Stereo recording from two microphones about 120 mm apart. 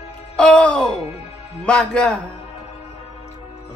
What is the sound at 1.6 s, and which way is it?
Speech, 10° left (ahead or behind).